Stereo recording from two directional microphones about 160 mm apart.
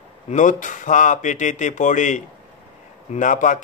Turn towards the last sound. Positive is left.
turn(degrees=55)  # may be behind; listen again after turning